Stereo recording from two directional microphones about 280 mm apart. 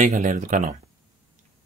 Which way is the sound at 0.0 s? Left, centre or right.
Right.